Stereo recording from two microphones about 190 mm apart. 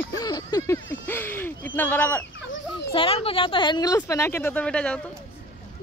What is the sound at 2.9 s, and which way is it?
A woman's voice, 30° left (ahead or behind).